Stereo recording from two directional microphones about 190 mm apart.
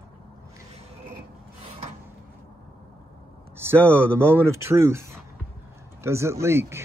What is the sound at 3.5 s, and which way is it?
Speech, 10° right (ahead or behind).